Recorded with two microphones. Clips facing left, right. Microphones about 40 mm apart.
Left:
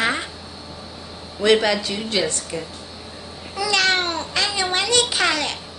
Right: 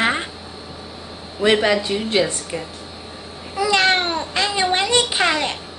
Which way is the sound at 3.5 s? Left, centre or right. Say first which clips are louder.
Right 3 dB; right.